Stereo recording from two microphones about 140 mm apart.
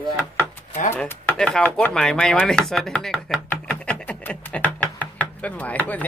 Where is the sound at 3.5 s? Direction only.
10° left (ahead or behind).